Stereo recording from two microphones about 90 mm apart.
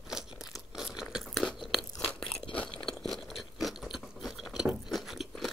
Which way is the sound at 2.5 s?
15° left (ahead or behind).